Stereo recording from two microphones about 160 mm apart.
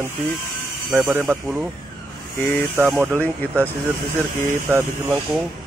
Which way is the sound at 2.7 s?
Centre (ahead or behind).